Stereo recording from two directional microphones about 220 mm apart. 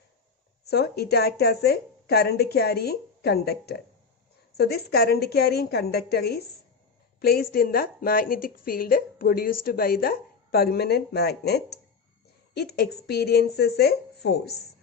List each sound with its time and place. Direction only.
0.7 s a woman's voice: 45° left (ahead or behind)